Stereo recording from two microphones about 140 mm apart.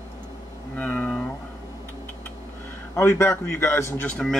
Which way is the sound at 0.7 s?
10° left (ahead or behind).